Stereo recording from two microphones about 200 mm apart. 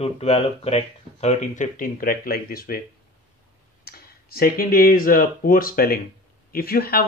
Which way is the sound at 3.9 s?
50° left (ahead or behind).